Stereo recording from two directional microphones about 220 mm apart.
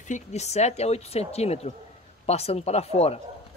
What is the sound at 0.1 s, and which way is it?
Speech, 30° left (ahead or behind).